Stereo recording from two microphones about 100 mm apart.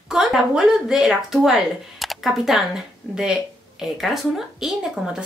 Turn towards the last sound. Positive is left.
turn(degrees=-5)  # may be behind; listen again after turning